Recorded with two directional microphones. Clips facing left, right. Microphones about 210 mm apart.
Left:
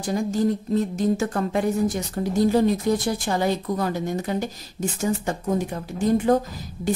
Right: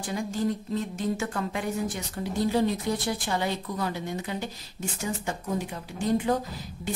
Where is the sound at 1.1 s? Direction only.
40° left (ahead or behind).